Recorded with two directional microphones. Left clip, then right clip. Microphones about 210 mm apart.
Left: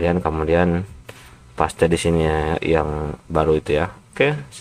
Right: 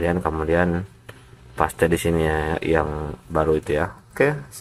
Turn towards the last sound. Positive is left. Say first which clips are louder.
# left 1 dB
turn(degrees=15)  # may be behind; listen again after turning